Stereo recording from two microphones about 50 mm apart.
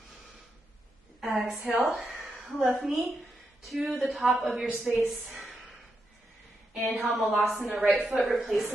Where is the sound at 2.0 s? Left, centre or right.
Centre.